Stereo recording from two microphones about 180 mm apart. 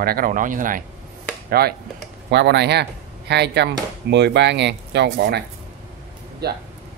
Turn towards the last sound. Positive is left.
turn(degrees=-65)  # may be behind; listen again after turning